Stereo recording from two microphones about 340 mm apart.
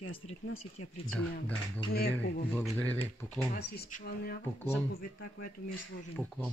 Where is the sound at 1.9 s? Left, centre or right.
Left.